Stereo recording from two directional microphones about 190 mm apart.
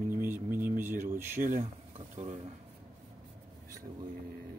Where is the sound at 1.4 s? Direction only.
45° right (ahead or behind).